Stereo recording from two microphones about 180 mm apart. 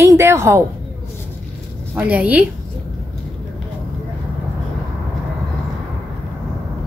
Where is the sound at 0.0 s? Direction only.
15° right (ahead or behind).